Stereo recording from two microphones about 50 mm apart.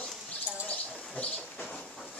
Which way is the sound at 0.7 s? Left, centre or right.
Left.